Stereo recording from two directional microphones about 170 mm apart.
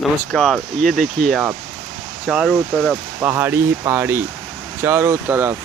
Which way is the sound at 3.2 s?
10° right (ahead or behind).